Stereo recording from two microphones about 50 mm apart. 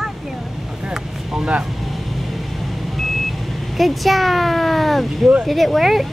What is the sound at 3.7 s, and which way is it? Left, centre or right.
Speech, centre.